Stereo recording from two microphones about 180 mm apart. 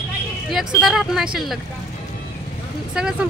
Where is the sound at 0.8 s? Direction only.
Centre (ahead or behind).